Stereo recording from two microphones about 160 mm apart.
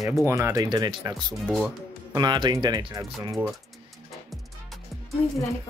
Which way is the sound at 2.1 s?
25° right (ahead or behind).